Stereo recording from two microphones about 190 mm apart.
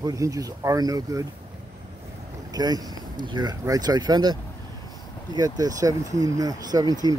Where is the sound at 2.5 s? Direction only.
20° right (ahead or behind).